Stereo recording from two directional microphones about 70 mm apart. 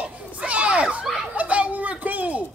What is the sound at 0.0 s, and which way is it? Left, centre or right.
Children playing, centre.